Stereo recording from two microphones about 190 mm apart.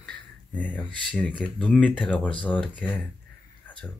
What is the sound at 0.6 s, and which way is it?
Speech, 5° left (ahead or behind).